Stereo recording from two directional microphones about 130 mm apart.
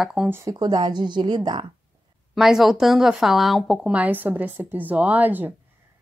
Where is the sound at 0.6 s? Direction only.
35° right (ahead or behind).